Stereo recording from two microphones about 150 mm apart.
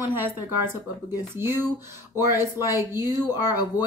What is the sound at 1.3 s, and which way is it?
A woman's voice, 15° right (ahead or behind).